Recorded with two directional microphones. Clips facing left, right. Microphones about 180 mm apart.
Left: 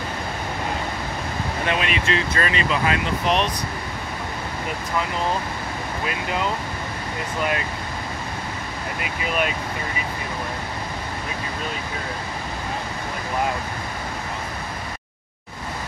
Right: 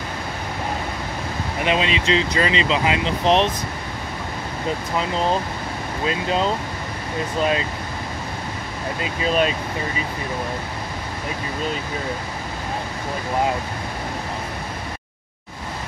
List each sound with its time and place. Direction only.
1.6 s speech: 20° right (ahead or behind)
6.0 s speech: 25° right (ahead or behind)
9.0 s speech: 25° right (ahead or behind)